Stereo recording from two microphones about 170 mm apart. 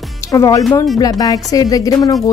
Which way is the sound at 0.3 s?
20° left (ahead or behind).